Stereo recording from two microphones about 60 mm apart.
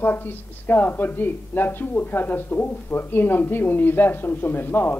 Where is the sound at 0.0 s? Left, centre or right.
Left.